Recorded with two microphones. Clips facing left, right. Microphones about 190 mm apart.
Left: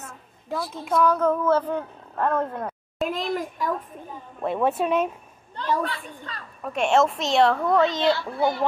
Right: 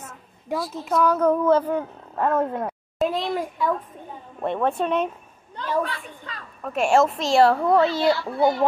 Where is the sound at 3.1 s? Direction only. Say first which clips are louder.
Right 2 dB; 45° left (ahead or behind).